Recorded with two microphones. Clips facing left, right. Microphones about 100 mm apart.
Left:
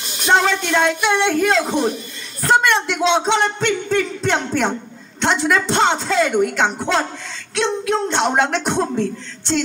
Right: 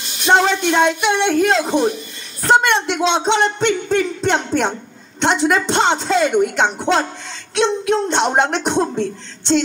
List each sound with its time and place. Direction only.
0.3 s speech: 20° right (ahead or behind)